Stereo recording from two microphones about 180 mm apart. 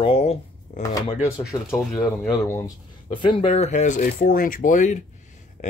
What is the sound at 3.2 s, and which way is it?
Speech, 30° left (ahead or behind).